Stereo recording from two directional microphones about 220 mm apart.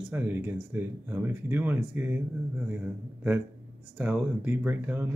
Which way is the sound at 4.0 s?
5° right (ahead or behind).